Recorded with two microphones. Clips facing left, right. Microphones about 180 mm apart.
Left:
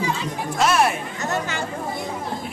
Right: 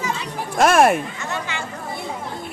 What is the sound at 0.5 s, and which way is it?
Speech, 50° right (ahead or behind).